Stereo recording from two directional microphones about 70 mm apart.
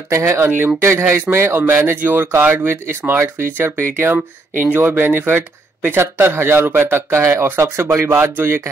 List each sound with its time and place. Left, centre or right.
0.1 s speech: right